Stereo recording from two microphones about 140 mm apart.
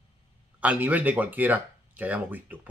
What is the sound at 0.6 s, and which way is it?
Speech, 10° right (ahead or behind).